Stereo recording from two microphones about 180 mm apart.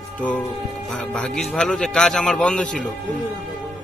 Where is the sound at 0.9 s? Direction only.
5° left (ahead or behind).